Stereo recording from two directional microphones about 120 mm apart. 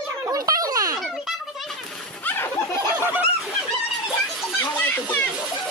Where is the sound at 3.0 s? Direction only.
15° right (ahead or behind).